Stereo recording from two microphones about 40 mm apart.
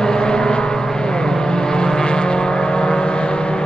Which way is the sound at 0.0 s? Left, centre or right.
Left.